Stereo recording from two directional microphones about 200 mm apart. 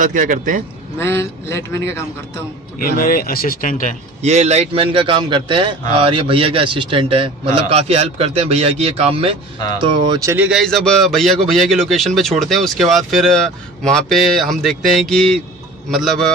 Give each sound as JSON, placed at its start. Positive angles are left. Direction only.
{"t": 0.0, "sound": "a man's voice", "side_deg": -40}
{"t": 0.9, "sound": "a man's voice", "side_deg": 15}
{"t": 2.8, "sound": "speech", "side_deg": 45}
{"t": 4.2, "sound": "a man's voice", "side_deg": -35}